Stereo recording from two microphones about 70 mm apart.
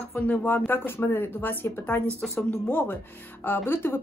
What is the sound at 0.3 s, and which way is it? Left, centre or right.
Speech, left.